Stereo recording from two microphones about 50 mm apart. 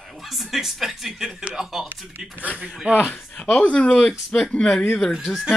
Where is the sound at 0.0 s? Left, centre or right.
Centre.